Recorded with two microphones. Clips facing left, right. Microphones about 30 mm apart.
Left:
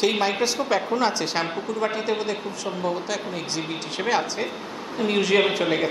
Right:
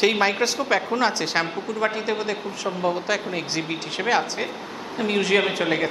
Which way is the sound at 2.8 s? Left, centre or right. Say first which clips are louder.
Right 4 dB; centre.